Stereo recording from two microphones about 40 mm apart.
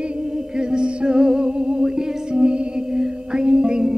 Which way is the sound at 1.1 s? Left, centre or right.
Right.